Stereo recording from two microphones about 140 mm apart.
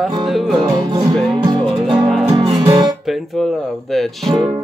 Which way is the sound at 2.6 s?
25° right (ahead or behind).